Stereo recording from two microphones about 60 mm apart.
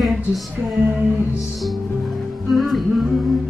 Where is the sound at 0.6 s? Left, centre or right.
Right.